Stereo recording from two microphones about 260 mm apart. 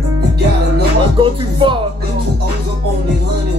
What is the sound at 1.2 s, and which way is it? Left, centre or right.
Music, centre.